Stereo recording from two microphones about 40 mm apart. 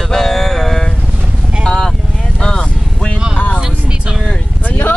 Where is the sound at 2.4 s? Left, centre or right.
Left.